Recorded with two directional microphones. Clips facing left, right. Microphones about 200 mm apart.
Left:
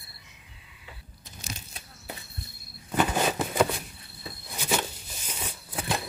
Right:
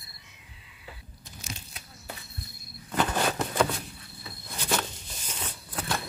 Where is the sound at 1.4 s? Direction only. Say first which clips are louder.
Left 1 dB; 35° left (ahead or behind).